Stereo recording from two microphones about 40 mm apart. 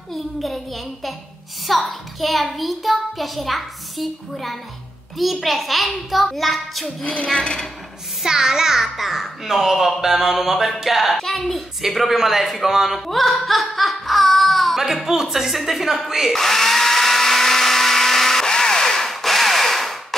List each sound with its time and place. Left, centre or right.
0.1 s a child's voice: centre
7.3 s speech: left
8.2 s a child's voice: centre
11.1 s a child's voice: centre
16.3 s blender: centre